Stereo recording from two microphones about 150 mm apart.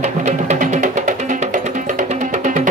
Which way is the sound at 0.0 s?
50° right (ahead or behind).